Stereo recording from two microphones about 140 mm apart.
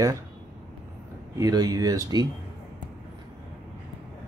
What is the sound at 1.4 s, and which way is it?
Speech, 30° right (ahead or behind).